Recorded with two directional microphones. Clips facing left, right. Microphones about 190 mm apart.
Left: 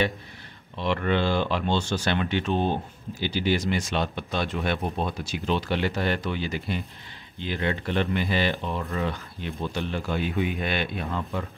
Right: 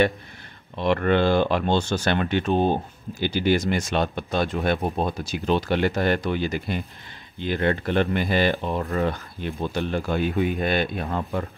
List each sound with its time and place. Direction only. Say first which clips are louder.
0.7 s speech: right 5 dB; 50° right (ahead or behind)